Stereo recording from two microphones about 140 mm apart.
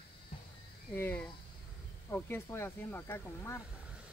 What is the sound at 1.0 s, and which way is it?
Speech, 10° left (ahead or behind).